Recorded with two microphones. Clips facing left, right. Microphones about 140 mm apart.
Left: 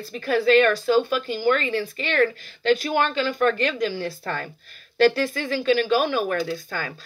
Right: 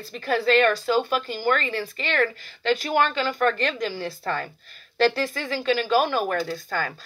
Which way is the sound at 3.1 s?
40° right (ahead or behind).